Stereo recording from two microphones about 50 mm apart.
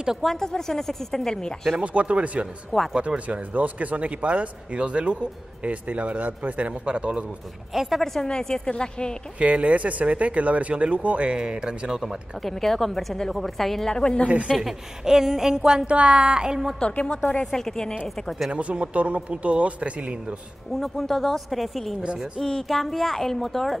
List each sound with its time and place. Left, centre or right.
0.4 s a woman's voice: centre
1.8 s speech: right
7.7 s speech: centre
8.0 s a woman's voice: centre
9.4 s speech: right
12.4 s a woman's voice: centre
14.6 s speech: centre
16.8 s a woman's voice: left
17.5 s a woman's voice: centre
18.5 s speech: right
20.8 s speech: centre
22.0 s speech: centre
22.4 s speech: centre